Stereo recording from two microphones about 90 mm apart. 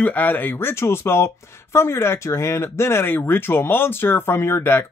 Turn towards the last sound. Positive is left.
turn(degrees=25)  # may be behind; listen again after turning